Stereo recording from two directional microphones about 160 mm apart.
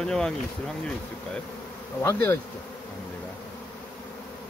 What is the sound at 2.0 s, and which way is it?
Bee, 15° left (ahead or behind).